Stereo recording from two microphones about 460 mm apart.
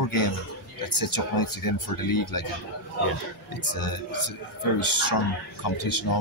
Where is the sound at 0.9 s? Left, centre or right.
Left.